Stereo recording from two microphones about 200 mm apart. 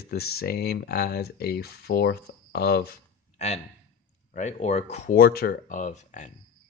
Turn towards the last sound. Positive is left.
turn(degrees=40)  # may be behind; listen again after turning